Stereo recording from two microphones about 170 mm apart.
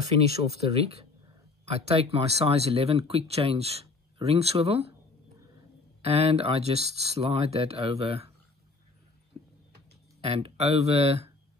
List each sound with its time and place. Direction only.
0.1 s speech: 40° right (ahead or behind)
6.0 s speech: 35° right (ahead or behind)
10.2 s speech: 35° right (ahead or behind)